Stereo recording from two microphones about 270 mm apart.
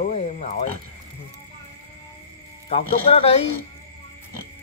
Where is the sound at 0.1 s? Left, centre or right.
Left.